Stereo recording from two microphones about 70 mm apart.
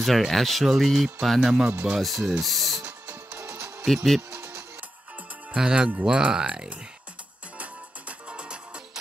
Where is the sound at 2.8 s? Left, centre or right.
Right.